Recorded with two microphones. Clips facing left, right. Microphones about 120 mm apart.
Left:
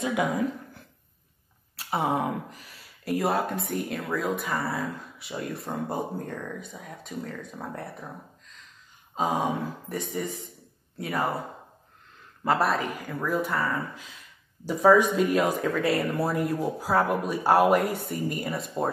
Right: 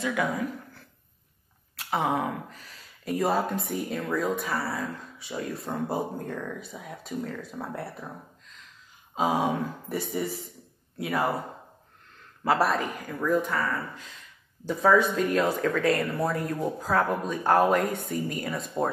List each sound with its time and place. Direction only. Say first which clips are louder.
0.0 s speech: left 2 dB; 20° left (ahead or behind)
1.8 s a sound: even; 5° left (ahead or behind)
3.1 s speech: even; centre (ahead or behind)
9.1 s speech: right 1 dB; 5° right (ahead or behind)
12.4 s speech: even; centre (ahead or behind)
14.8 s speech: left 3 dB; 15° left (ahead or behind)